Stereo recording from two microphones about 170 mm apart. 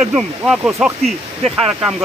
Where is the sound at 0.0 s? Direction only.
5° right (ahead or behind).